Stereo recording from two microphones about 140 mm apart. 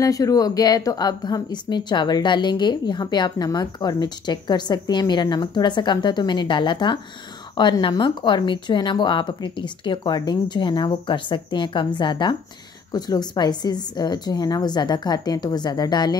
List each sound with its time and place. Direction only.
0.0 s a woman's voice: 25° left (ahead or behind)